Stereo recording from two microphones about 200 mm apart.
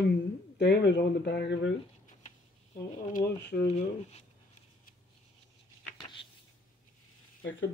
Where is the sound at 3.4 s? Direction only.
55° left (ahead or behind).